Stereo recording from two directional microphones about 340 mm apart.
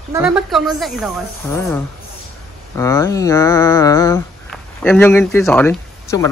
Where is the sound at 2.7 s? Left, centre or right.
Centre.